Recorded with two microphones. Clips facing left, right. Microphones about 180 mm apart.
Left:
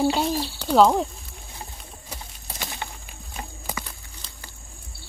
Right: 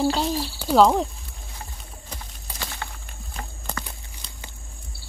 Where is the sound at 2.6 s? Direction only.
20° left (ahead or behind).